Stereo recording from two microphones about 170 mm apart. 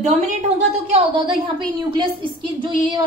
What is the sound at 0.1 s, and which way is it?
Speech, 45° right (ahead or behind).